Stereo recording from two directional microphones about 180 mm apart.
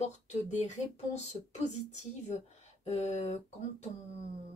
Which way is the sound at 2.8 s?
40° left (ahead or behind).